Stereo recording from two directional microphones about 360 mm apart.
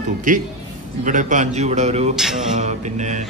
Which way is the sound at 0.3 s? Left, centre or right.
Right.